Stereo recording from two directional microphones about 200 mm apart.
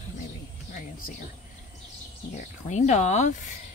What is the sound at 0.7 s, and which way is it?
Speech, 45° left (ahead or behind).